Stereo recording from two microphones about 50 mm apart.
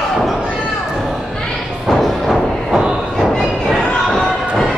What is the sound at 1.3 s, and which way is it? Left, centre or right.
Thump, centre.